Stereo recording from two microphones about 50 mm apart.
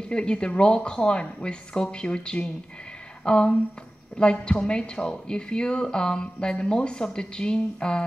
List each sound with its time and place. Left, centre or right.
0.1 s a woman's voice: centre